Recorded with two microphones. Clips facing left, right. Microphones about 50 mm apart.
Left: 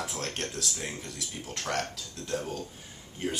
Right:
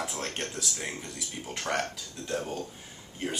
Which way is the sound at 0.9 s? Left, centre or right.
Centre.